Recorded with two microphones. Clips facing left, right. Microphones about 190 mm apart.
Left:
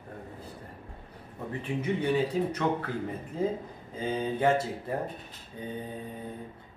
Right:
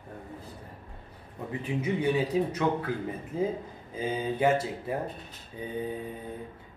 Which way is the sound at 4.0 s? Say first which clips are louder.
Right 1 dB; 10° right (ahead or behind).